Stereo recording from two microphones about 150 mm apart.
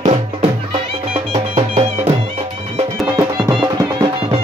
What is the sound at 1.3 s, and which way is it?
Music, 45° right (ahead or behind).